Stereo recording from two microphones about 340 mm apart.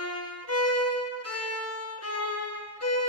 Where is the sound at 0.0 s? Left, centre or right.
Left.